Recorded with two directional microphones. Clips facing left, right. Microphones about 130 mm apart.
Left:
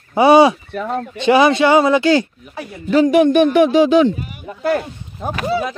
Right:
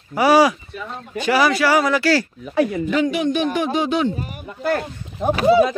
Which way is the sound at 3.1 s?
55° left (ahead or behind).